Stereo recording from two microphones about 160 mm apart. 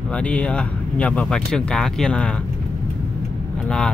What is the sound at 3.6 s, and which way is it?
Speech, 5° left (ahead or behind).